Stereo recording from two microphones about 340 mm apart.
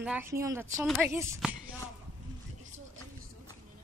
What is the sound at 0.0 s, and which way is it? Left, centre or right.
A woman's voice, centre.